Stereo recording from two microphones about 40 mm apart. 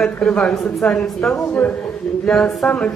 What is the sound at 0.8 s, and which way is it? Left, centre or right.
Speech, left.